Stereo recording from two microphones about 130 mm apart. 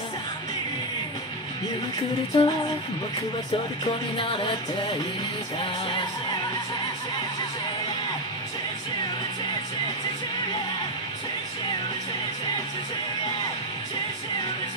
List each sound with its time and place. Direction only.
2.3 s music: 45° left (ahead or behind)
3.8 s music: 40° left (ahead or behind)
5.6 s music: 40° left (ahead or behind)